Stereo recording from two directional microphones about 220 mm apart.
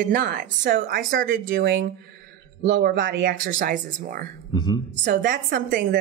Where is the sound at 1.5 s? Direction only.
55° right (ahead or behind).